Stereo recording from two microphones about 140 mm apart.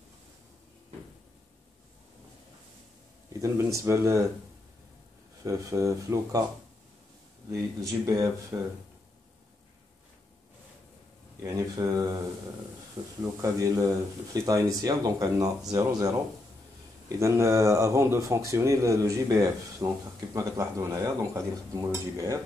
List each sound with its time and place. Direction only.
3.3 s speech: 20° right (ahead or behind)
5.4 s speech: 25° right (ahead or behind)
7.5 s speech: 20° right (ahead or behind)
11.4 s speech: 25° right (ahead or behind)
13.2 s speech: 25° right (ahead or behind)
17.2 s speech: 20° right (ahead or behind)